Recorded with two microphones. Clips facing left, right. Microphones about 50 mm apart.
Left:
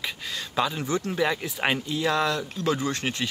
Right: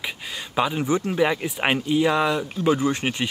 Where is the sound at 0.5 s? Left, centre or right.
Centre.